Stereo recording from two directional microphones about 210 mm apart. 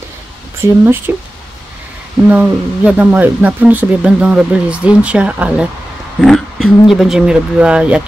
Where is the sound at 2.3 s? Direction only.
5° right (ahead or behind).